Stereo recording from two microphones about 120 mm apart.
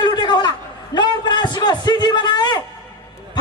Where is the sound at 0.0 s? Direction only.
35° left (ahead or behind).